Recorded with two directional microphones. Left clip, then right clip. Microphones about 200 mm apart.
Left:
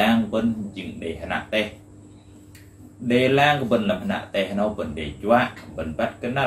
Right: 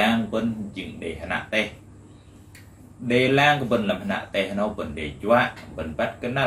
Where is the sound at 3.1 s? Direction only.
10° right (ahead or behind).